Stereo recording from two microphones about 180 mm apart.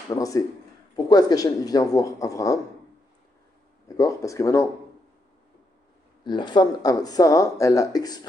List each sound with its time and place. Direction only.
0.1 s speech: 20° left (ahead or behind)
3.9 s speech: 20° left (ahead or behind)
6.2 s speech: 25° left (ahead or behind)